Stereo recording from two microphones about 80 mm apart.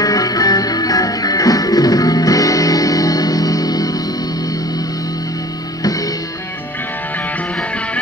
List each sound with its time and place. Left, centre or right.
0.0 s music: left
5.8 s music: left